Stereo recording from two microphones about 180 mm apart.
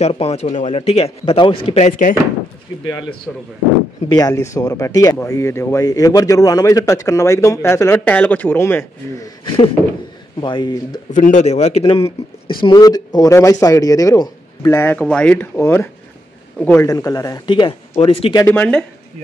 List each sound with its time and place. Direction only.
0.0 s speech: 35° left (ahead or behind)
2.8 s speech: 25° left (ahead or behind)
4.1 s speech: 20° left (ahead or behind)
10.4 s speech: 25° left (ahead or behind)
11.1 s speech: 45° left (ahead or behind)
12.6 s speech: 20° left (ahead or behind)
18.4 s speech: 10° left (ahead or behind)